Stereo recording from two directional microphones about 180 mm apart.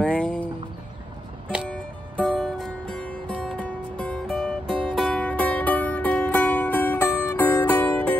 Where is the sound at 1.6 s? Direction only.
5° left (ahead or behind).